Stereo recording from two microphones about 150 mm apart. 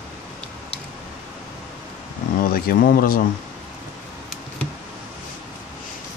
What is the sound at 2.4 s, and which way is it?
Speech, 75° left (ahead or behind).